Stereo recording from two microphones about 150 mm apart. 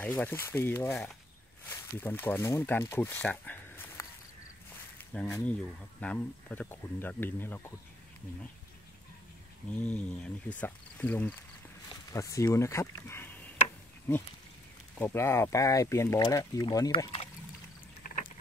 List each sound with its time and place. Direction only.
0.0 s speech: 10° left (ahead or behind)
4.9 s a sound: 10° left (ahead or behind)
5.9 s speech: 10° left (ahead or behind)
9.8 s speech: 10° left (ahead or behind); by 17.1 s 25° left (ahead or behind)
18.0 s rowboat: 65° left (ahead or behind)